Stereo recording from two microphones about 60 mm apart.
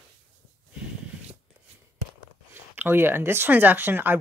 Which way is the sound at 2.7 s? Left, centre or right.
Right.